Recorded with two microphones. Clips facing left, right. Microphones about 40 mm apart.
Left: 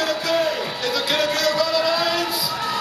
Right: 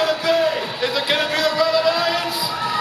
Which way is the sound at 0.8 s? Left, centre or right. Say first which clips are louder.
Right 1 dB; right.